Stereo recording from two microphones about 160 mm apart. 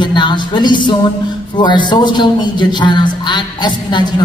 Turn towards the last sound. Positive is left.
turn(degrees=30)  # may be behind; listen again after turning